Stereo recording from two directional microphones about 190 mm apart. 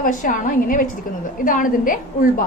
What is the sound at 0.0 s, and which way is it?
A woman's voice, 45° left (ahead or behind).